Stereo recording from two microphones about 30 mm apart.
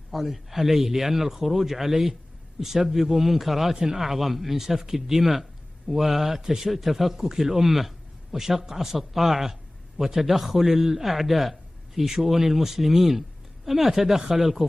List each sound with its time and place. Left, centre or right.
0.1 s speech: centre
3.7 s speech: centre
4.0 s speech: centre